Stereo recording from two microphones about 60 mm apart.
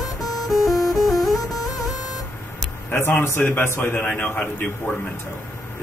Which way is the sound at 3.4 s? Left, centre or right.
Left.